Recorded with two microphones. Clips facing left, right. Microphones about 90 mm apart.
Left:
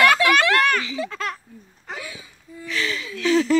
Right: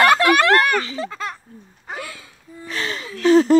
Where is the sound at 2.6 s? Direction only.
45° right (ahead or behind).